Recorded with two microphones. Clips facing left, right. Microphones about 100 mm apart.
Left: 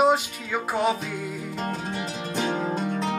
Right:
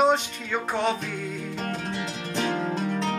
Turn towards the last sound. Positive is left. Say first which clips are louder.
# even
turn(degrees=10)  # may be behind; listen again after turning